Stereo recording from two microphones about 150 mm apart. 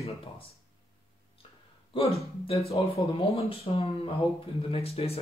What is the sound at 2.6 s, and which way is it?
Speech, 45° left (ahead or behind).